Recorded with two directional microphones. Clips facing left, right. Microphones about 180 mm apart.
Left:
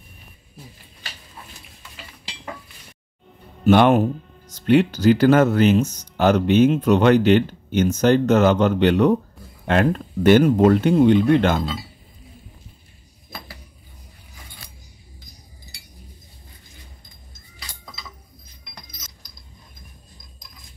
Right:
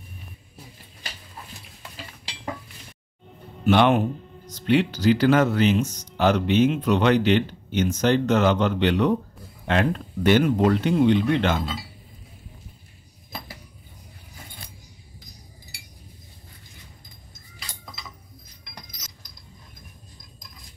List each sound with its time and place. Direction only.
3.6 s speech: 45° left (ahead or behind)